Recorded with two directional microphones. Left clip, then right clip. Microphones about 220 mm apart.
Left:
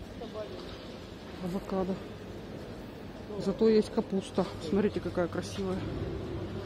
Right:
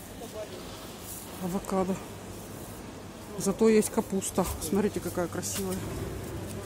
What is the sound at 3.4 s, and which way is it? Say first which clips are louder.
Speech: right 2 dB; 30° right (ahead or behind).